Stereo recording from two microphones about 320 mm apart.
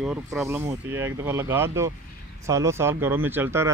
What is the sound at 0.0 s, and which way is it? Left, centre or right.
Speech, centre.